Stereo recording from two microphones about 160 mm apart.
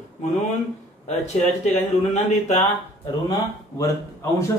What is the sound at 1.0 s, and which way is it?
A man's voice, 45° left (ahead or behind).